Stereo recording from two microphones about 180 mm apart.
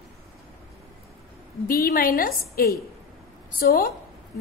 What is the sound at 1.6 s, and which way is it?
A woman's voice, 55° left (ahead or behind).